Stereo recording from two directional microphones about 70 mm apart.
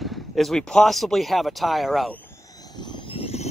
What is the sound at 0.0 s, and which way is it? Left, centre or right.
Speech, centre.